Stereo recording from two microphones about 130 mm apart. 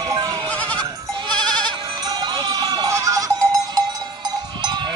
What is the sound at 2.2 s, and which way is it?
Sheep, 35° right (ahead or behind).